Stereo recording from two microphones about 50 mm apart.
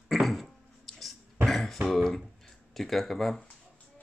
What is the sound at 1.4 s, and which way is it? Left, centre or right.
Throat clearing, centre.